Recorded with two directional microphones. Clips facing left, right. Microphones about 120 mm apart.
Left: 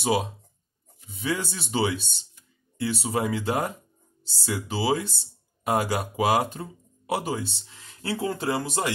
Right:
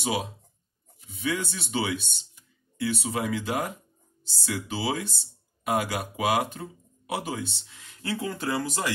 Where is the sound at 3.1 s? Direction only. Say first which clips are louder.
Left 3 dB; 30° left (ahead or behind).